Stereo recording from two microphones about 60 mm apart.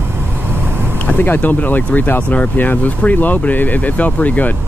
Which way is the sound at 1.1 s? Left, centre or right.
Left.